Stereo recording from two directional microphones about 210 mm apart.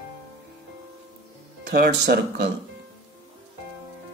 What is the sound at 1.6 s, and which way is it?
Speech, 50° right (ahead or behind).